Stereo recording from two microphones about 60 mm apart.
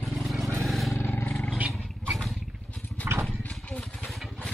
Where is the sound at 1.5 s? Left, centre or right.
Right.